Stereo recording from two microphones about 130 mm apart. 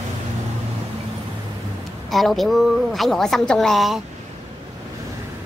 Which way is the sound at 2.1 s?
Centre (ahead or behind).